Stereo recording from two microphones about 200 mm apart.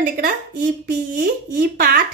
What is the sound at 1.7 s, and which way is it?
Speech, 45° right (ahead or behind).